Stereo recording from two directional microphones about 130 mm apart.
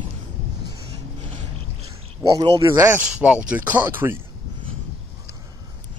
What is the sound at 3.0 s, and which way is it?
Speech, 5° right (ahead or behind).